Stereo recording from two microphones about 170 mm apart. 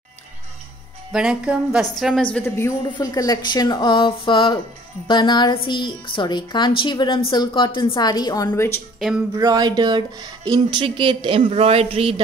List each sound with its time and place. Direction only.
1.1 s a woman's voice: 5° right (ahead or behind)
2.3 s speech: 15° left (ahead or behind)
9.0 s a woman's voice: centre (ahead or behind)
9.4 s speech: 25° right (ahead or behind)